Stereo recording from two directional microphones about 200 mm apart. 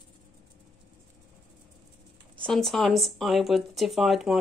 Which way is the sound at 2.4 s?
Centre (ahead or behind).